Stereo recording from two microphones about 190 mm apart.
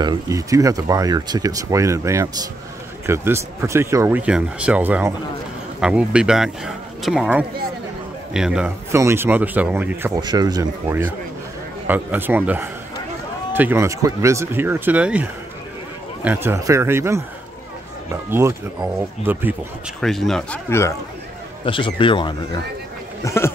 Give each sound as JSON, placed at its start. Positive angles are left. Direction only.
{"t": 0.0, "sound": "speech", "side_deg": -15}
{"t": 10.2, "sound": "speech", "side_deg": -20}
{"t": 16.3, "sound": "speech", "side_deg": -10}
{"t": 18.3, "sound": "speech", "side_deg": -10}
{"t": 20.0, "sound": "speech", "side_deg": 0}
{"t": 21.6, "sound": "speech", "side_deg": 25}
{"t": 23.2, "sound": "speech", "side_deg": 15}